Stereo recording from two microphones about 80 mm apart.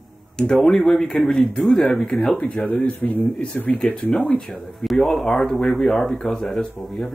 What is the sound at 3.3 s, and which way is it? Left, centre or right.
Speech, centre.